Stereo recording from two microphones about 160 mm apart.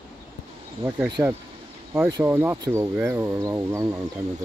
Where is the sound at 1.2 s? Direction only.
20° right (ahead or behind).